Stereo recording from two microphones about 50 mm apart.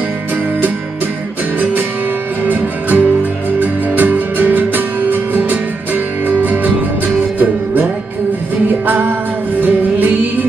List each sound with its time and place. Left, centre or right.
2.4 s music: right
8.8 s music: right